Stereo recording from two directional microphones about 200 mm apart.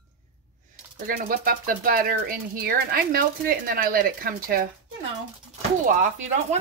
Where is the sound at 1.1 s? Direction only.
45° right (ahead or behind).